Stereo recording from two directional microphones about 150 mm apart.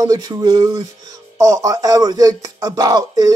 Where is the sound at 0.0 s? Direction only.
25° right (ahead or behind).